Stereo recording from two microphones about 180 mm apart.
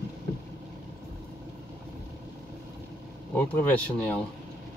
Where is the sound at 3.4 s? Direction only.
10° left (ahead or behind).